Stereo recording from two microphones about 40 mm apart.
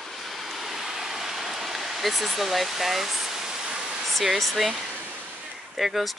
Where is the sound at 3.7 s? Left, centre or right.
Right.